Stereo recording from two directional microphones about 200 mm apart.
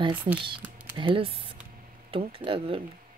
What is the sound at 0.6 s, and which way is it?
Typing, 10° right (ahead or behind).